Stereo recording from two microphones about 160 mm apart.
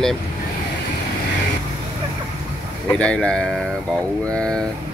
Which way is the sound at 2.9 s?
5° left (ahead or behind).